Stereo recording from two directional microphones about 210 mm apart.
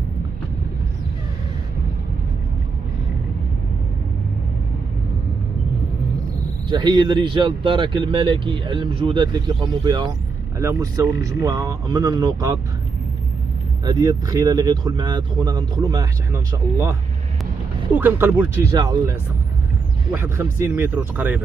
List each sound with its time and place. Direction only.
6.7 s speech: 20° right (ahead or behind)
13.8 s speech: 15° right (ahead or behind)
17.9 s speech: 10° right (ahead or behind)